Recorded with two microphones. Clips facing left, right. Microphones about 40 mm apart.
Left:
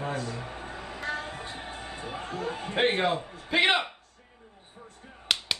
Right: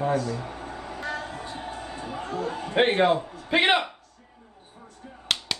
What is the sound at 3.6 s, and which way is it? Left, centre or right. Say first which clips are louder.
Speech: right 2 dB; right.